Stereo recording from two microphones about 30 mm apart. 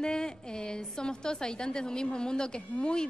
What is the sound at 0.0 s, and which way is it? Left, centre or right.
A woman's voice, left.